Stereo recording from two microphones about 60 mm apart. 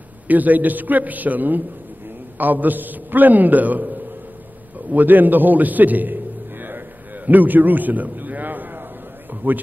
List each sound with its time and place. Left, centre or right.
0.3 s a man's voice: right
7.2 s a sound: right
9.3 s a man's voice: right